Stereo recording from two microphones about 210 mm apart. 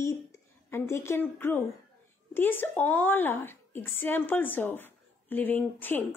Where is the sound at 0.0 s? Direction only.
10° left (ahead or behind).